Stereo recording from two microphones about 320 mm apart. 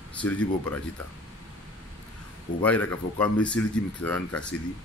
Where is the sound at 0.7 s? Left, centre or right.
Centre.